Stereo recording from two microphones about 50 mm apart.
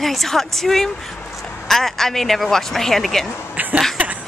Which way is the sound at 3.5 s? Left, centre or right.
Right.